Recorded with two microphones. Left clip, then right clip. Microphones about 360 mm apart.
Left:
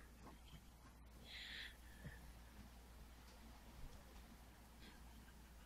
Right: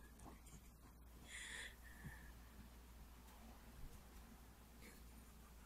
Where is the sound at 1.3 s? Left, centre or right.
Centre.